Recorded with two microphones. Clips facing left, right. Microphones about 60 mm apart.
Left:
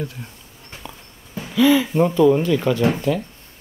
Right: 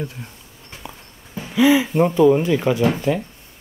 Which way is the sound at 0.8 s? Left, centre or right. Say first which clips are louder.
Right 1 dB; centre.